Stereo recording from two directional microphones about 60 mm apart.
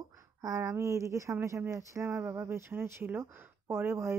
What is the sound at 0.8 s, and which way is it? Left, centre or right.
Speech, right.